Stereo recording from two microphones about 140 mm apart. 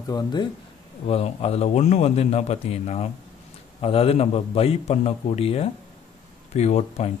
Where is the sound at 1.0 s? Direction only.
45° left (ahead or behind).